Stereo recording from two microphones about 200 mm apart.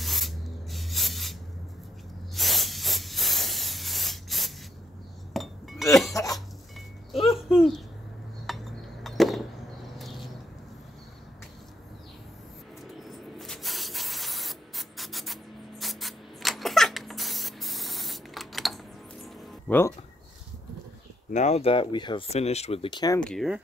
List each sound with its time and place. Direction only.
0.0 s spray: centre (ahead or behind)
2.3 s spray: centre (ahead or behind)
5.3 s chink: centre (ahead or behind)
6.2 s cough: 15° left (ahead or behind)
7.3 s a sound: centre (ahead or behind)
13.4 s spray: centre (ahead or behind)
15.8 s a sound: centre (ahead or behind)
19.2 s music: 10° left (ahead or behind)
21.3 s speech: 35° left (ahead or behind); by 23.2 s 20° left (ahead or behind)
23.2 s speech: centre (ahead or behind)